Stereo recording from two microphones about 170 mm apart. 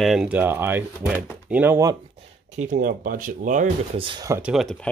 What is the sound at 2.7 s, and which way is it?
Speech, 55° right (ahead or behind).